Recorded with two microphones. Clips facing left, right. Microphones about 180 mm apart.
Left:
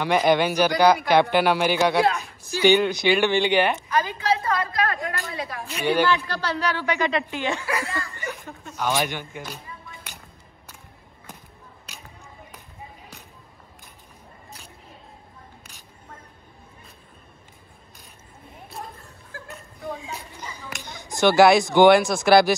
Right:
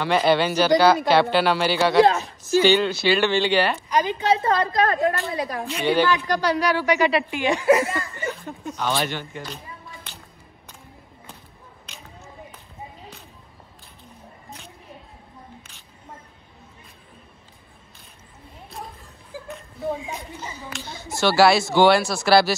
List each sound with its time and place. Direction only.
0.0 s speech: 15° left (ahead or behind)
3.9 s a child's voice: 20° right (ahead or behind)
4.4 s a woman's voice: 30° right (ahead or behind)
6.2 s speech: 15° right (ahead or behind)
8.4 s speech: 15° left (ahead or behind)
19.9 s a sound: 15° right (ahead or behind)
20.3 s speech: 15° left (ahead or behind)